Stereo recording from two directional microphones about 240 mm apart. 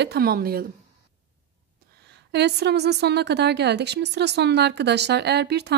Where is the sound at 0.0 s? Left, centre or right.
Right.